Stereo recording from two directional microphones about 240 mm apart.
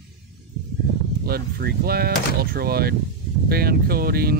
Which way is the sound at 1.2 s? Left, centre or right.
Right.